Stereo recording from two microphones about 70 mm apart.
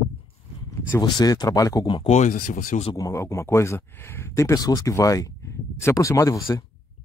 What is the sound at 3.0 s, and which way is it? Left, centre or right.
Speech, left.